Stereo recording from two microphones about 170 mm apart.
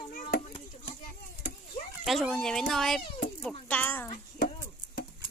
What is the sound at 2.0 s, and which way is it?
Speech, centre (ahead or behind).